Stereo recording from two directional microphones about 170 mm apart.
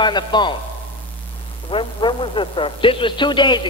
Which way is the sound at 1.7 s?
30° left (ahead or behind).